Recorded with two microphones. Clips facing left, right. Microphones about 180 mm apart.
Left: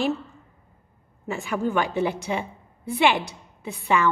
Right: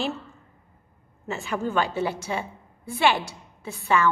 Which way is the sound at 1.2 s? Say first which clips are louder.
Left 2 dB; 10° left (ahead or behind).